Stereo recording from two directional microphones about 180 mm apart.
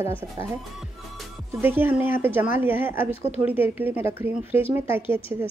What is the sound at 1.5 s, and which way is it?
Speech, 10° right (ahead or behind).